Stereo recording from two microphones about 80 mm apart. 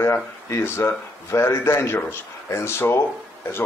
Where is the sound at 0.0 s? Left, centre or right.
Left.